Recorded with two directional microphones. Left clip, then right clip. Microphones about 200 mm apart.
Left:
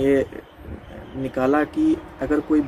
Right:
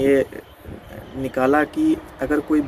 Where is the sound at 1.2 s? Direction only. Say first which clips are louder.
Right 2 dB; 10° right (ahead or behind).